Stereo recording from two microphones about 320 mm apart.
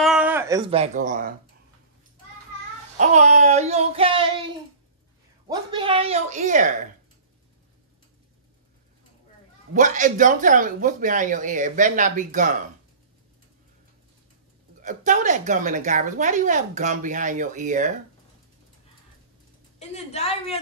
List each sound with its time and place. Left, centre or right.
0.0 s speech: centre; by 1.3 s right
3.0 s a woman's voice: right
5.5 s a woman's voice: centre
9.8 s a woman's voice: right
14.8 s a woman's voice: right
19.8 s a woman's voice: centre